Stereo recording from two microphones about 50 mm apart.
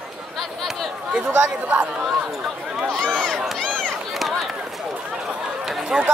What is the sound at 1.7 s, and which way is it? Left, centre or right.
Speech, right.